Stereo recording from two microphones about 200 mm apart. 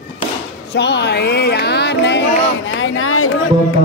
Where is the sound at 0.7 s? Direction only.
60° left (ahead or behind); by 3.3 s 90° left.